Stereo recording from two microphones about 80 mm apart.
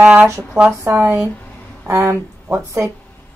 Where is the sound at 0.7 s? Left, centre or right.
Right.